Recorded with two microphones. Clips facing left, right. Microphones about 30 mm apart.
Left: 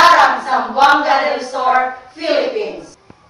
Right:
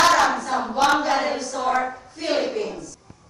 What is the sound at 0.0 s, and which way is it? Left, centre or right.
Hands, left.